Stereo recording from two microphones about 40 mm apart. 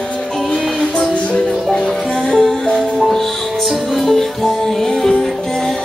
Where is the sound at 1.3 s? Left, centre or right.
Centre.